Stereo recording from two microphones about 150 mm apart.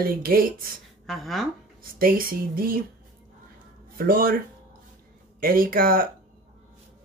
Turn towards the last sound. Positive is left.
turn(degrees=-75)  # may be behind; listen again after turning